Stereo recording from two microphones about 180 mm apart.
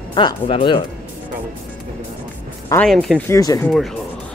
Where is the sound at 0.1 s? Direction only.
25° left (ahead or behind).